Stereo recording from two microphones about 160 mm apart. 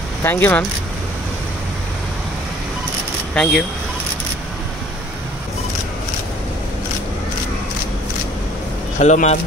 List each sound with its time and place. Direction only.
0.2 s speech: 15° left (ahead or behind)
3.4 s speech: 5° left (ahead or behind)
9.0 s speech: 45° left (ahead or behind)